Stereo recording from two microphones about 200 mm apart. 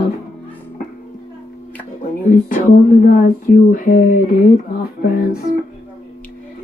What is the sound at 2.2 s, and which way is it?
Speech, 40° left (ahead or behind).